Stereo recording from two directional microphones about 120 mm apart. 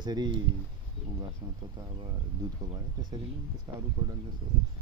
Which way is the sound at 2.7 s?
35° right (ahead or behind).